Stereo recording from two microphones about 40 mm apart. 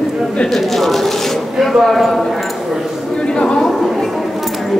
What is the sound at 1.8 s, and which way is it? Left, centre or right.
Clip-clop, centre.